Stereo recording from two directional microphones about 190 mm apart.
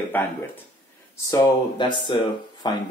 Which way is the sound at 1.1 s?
20° left (ahead or behind).